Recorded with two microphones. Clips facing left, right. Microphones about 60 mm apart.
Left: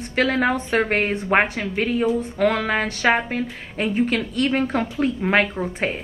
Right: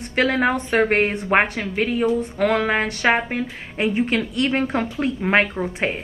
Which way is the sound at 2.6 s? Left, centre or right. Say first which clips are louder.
Right 1 dB; centre.